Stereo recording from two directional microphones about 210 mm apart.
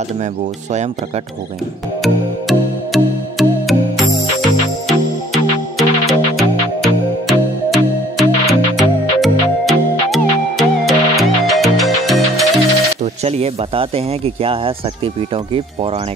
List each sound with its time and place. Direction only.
2.0 s music: centre (ahead or behind)
13.0 s speech: 30° right (ahead or behind)